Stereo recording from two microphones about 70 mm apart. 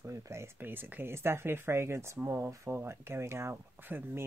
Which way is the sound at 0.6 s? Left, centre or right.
Right.